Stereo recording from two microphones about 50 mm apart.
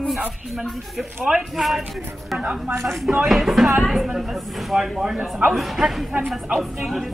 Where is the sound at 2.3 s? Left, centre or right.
Centre.